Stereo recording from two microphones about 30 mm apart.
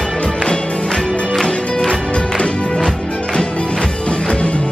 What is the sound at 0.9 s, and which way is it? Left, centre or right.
Music, left.